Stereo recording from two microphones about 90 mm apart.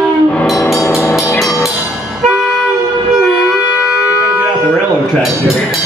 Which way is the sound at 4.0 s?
15° right (ahead or behind).